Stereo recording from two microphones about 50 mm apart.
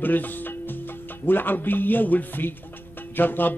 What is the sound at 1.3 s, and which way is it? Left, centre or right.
Speech, left.